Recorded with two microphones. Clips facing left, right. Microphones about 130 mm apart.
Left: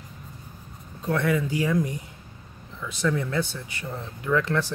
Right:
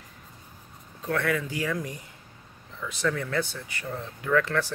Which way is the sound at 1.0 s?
20° left (ahead or behind).